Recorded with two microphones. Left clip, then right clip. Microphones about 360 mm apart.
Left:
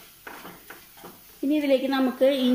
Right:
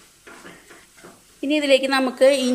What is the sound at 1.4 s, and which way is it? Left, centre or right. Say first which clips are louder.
Speech: right 5 dB; right.